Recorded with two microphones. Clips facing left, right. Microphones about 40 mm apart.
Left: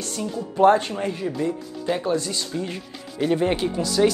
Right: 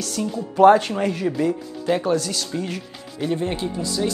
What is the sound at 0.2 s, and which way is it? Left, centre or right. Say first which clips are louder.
Speech: right 3 dB; centre.